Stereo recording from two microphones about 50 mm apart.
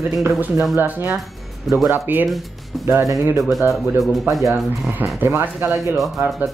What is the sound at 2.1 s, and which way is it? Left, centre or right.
Speech, right.